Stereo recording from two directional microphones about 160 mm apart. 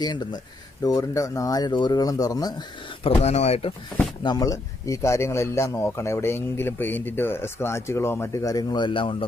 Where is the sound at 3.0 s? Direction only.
40° left (ahead or behind).